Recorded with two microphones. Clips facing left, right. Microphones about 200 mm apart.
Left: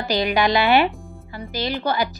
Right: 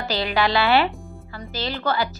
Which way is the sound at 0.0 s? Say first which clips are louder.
Left 3 dB; 15° left (ahead or behind).